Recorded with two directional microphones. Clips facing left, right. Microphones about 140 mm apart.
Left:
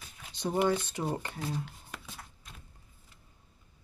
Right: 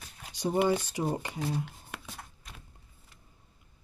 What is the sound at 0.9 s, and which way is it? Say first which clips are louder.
Speech: right 2 dB; 10° right (ahead or behind).